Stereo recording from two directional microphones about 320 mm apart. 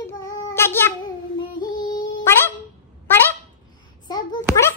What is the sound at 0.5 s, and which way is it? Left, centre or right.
Child singing, centre.